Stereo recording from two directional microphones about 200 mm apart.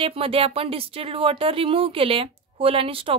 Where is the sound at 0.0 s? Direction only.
30° right (ahead or behind).